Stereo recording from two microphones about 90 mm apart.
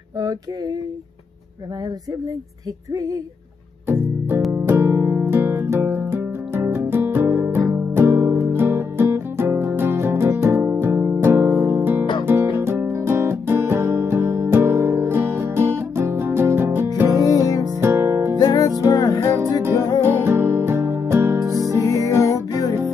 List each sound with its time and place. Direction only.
3.8 s music: 25° right (ahead or behind)
18.4 s music: 45° left (ahead or behind)
19.6 s music: 30° right (ahead or behind)
21.8 s music: 40° left (ahead or behind)